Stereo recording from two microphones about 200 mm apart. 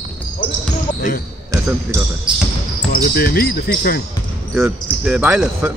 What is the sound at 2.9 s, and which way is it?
Speech, 50° left (ahead or behind).